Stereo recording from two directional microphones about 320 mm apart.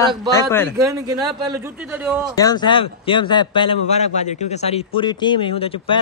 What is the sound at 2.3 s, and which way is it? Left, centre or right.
A man's voice, centre.